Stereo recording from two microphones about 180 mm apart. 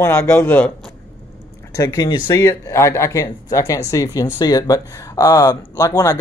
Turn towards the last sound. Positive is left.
turn(degrees=20)  # may be behind; listen again after turning